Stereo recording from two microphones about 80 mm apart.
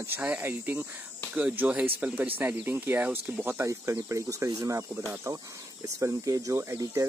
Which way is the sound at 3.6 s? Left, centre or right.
Right.